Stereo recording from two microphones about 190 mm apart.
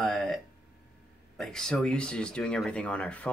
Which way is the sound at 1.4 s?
5° left (ahead or behind).